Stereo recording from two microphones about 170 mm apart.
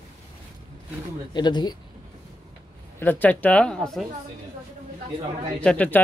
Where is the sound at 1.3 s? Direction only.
25° left (ahead or behind).